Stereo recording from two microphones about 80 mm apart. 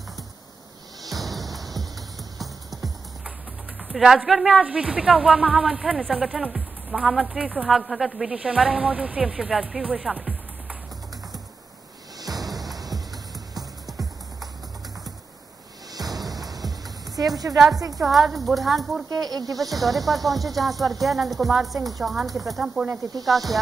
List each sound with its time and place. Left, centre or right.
1.2 s music: centre
3.9 s speech: centre
9.2 s speech: centre
12.2 s music: right
15.9 s music: right
17.7 s a woman's voice: right
18.0 s speech: centre
19.0 s speech: right
19.5 s speech: centre